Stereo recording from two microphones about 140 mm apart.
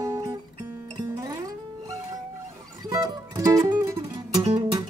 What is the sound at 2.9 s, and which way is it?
Music, 25° right (ahead or behind).